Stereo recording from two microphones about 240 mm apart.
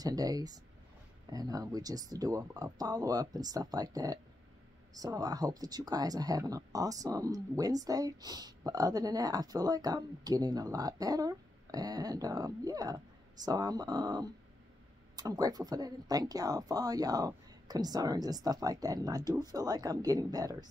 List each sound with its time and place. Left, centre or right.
0.0 s speech: centre